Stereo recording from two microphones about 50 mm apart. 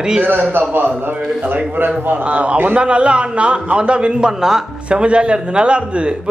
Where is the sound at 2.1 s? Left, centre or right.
Right.